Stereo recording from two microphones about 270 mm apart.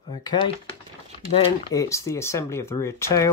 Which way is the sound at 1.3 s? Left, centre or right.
Centre.